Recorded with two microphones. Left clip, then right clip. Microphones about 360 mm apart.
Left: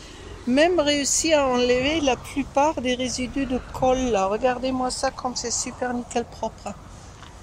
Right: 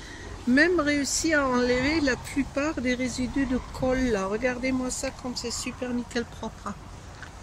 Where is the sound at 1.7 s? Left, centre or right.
Left.